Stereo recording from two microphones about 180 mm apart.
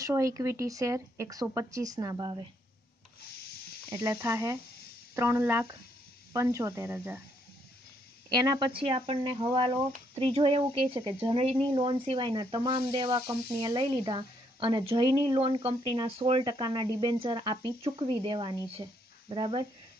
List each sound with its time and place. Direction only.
0.0 s speech: 15° right (ahead or behind)
3.9 s speech: 15° right (ahead or behind)
8.3 s a woman's voice: 25° right (ahead or behind)